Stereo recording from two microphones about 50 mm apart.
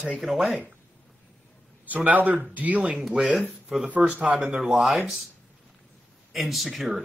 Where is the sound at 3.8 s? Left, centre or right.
Right.